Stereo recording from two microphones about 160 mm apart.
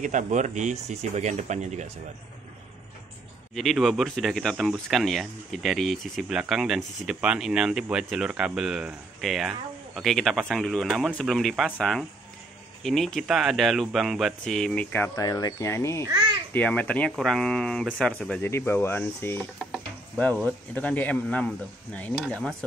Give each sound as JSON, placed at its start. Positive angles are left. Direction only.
{"t": 0.0, "sound": "speech", "side_deg": -50}
{"t": 3.5, "sound": "speech", "side_deg": 0}
{"t": 15.1, "sound": "speech", "side_deg": 25}
{"t": 19.7, "sound": "stir", "side_deg": 10}
{"t": 20.7, "sound": "speech", "side_deg": 10}